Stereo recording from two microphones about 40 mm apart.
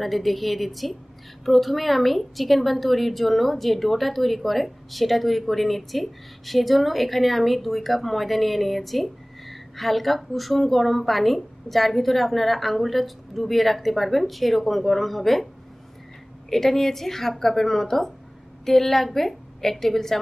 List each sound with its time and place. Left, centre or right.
0.0 s a woman's voice: centre
16.4 s a woman's voice: centre